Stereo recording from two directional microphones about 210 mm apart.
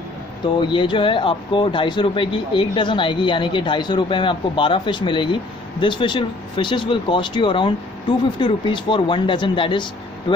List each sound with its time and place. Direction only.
0.6 s speech: 25° left (ahead or behind)